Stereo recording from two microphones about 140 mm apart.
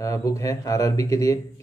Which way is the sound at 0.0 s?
25° left (ahead or behind).